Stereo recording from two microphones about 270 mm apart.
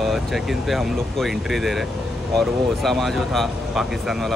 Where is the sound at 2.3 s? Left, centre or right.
Centre.